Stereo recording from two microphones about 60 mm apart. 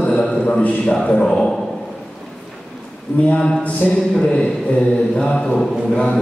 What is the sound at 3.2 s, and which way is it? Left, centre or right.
A man's voice, centre.